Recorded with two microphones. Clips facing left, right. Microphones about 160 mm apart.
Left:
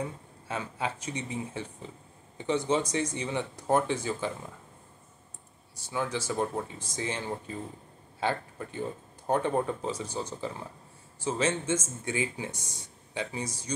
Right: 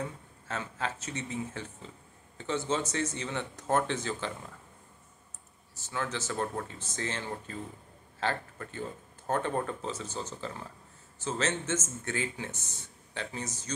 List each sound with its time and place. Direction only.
0.5 s speech: 15° left (ahead or behind)
5.8 s a man's voice: 15° left (ahead or behind)